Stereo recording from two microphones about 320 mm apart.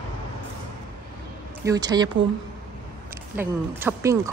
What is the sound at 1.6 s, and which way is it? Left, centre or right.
Speech, centre.